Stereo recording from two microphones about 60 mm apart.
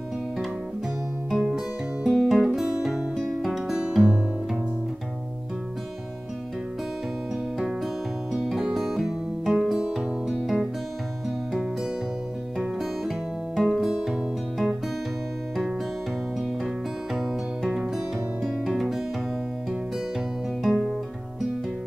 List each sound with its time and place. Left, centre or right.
1.3 s music: centre
3.8 s music: centre
7.5 s music: centre
13.6 s music: centre
16.6 s music: centre
20.6 s music: centre